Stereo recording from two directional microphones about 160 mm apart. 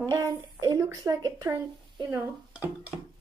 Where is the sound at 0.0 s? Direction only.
20° right (ahead or behind).